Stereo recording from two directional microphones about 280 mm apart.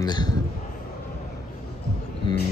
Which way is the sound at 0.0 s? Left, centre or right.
Centre.